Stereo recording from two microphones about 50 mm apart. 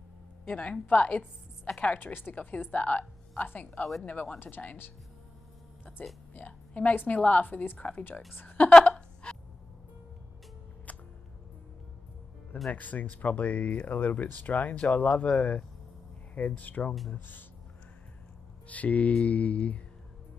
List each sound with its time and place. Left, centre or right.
0.5 s a woman's voice: left
1.8 s a sound: left
2.1 s speech: left
2.7 s speech: left
4.0 s a sound: left
4.4 s speech: left
6.0 s a sound: left
6.3 s a woman's voice: left
9.2 s gasp: left
10.9 s music: left
12.7 s speech: left
18.7 s a sound: left